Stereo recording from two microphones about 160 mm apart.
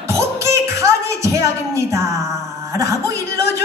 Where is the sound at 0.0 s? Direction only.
20° right (ahead or behind).